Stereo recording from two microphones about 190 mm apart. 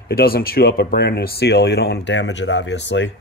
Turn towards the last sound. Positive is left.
turn(degrees=70)  # may be behind; listen again after turning